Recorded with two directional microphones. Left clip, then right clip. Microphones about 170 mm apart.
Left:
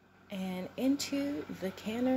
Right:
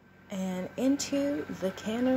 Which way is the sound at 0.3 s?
Centre (ahead or behind).